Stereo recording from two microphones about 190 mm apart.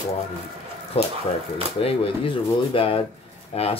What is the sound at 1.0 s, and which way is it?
Speech, 30° left (ahead or behind).